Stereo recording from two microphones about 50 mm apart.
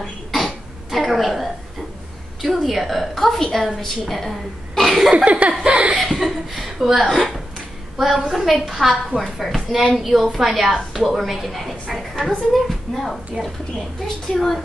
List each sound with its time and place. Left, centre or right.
0.0 s cough: centre
2.4 s a woman's voice: centre
5.1 s laughter: right
5.9 s a woman's voice: centre
7.1 s a woman's voice: centre
8.3 s a woman's voice: centre